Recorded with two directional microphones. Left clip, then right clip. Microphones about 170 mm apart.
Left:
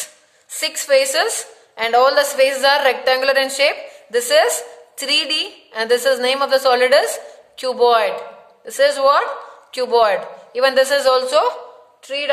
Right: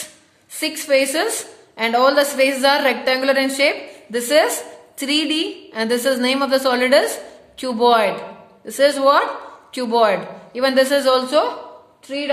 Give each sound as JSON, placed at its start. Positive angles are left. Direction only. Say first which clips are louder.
{"t": 0.6, "sound": "a woman's voice", "louder": "left 2 dB", "side_deg": 40}